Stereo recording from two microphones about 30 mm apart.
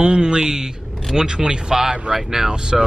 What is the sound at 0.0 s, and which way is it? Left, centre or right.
Speech, right.